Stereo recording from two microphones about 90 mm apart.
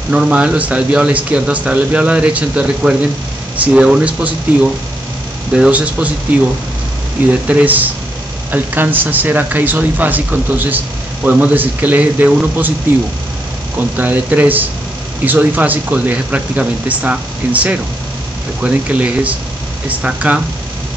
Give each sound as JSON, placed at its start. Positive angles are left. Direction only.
{"t": 0.1, "sound": "speech", "side_deg": -10}
{"t": 5.5, "sound": "speech", "side_deg": -15}
{"t": 7.2, "sound": "speech", "side_deg": -15}
{"t": 13.9, "sound": "speech", "side_deg": -20}